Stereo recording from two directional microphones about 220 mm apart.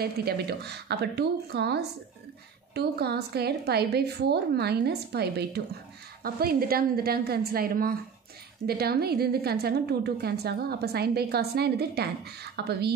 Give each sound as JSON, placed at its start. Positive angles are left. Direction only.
{"t": 0.0, "sound": "a woman's voice", "side_deg": -45}